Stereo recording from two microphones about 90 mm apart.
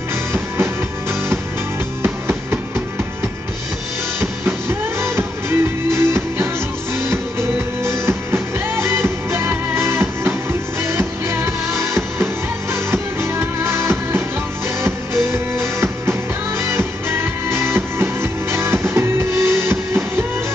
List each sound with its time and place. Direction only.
4.2 s music: 25° right (ahead or behind)